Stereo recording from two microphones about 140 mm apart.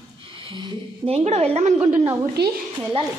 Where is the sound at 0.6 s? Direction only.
45° right (ahead or behind).